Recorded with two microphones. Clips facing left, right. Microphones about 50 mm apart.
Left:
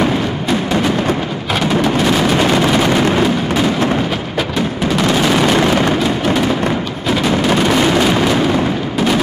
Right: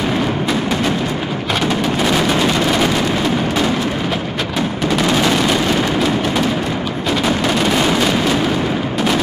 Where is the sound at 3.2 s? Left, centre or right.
Centre.